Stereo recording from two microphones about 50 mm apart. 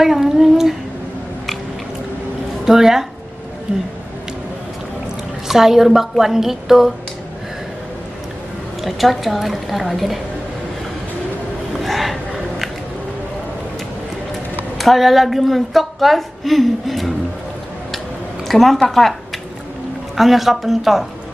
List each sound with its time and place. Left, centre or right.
0.0 s a woman's voice: centre
2.6 s a woman's voice: centre
5.5 s a woman's voice: centre
8.8 s a woman's voice: centre
11.8 s a sound: centre
14.8 s a woman's voice: centre
18.5 s a woman's voice: centre
20.2 s a woman's voice: centre